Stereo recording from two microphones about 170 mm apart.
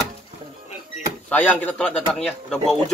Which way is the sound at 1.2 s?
10° left (ahead or behind).